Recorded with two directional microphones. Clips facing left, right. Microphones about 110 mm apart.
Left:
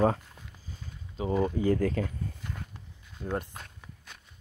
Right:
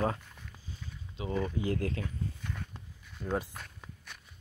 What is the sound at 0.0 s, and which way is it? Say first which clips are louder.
Speech: left 6 dB; 25° left (ahead or behind).